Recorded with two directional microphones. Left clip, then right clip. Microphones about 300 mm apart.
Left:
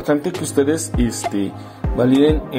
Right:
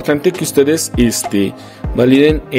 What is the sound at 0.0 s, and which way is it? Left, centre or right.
Speech, right.